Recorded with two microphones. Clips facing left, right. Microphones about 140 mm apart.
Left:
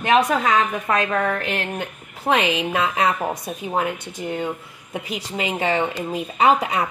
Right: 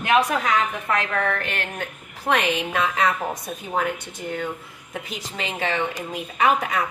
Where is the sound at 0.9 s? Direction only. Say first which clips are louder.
Left 2 dB; 20° left (ahead or behind).